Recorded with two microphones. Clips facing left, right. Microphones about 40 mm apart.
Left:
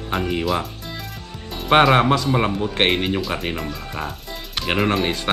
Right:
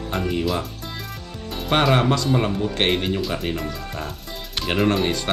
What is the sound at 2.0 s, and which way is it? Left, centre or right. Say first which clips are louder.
Speech: left 2 dB; centre.